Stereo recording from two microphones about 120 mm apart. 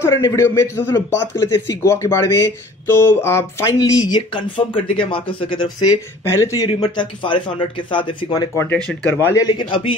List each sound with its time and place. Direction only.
0.0 s speech: 20° left (ahead or behind)
4.3 s speech: 45° left (ahead or behind)
6.3 s speech: 25° left (ahead or behind)
9.0 s speech: 20° left (ahead or behind)
9.4 s speech: 40° left (ahead or behind)